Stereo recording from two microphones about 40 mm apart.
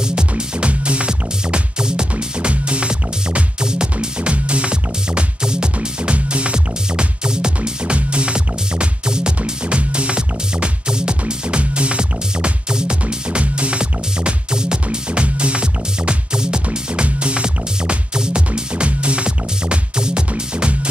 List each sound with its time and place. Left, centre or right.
0.4 s music: right